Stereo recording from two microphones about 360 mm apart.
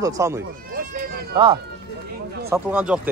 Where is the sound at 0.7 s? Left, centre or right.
Right.